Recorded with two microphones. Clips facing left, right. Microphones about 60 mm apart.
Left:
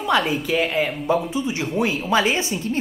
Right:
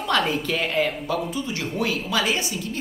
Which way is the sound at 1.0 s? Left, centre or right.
Left.